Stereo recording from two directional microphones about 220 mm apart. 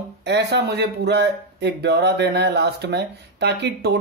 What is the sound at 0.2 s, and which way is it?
Speech, 50° right (ahead or behind).